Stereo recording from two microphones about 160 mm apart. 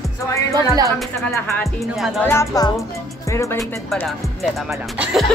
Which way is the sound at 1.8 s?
Centre (ahead or behind).